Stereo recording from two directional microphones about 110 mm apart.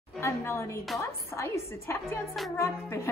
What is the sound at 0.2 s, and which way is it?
A woman's voice, 20° left (ahead or behind).